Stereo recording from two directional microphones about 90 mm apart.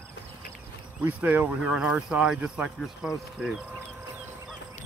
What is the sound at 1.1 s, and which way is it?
Speech, 20° right (ahead or behind).